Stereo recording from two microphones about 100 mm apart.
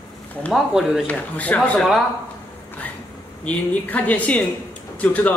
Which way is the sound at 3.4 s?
15° left (ahead or behind).